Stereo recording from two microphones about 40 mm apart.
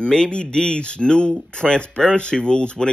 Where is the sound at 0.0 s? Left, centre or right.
Left.